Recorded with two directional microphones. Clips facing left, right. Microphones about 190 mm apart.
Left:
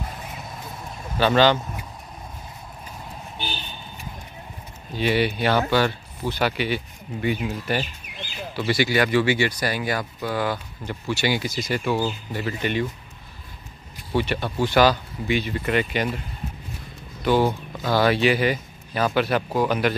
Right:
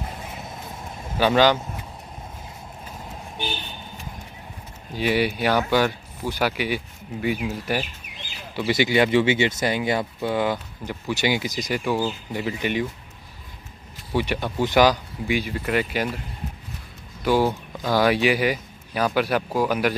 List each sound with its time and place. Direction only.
1.1 s speech: 10° right (ahead or behind)
4.9 s speech: 10° right (ahead or behind)
14.1 s speech: 15° right (ahead or behind)
17.2 s speech: 10° right (ahead or behind)